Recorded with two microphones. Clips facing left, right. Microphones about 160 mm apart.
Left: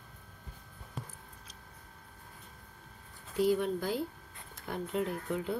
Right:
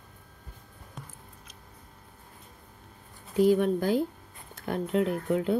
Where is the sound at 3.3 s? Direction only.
55° right (ahead or behind).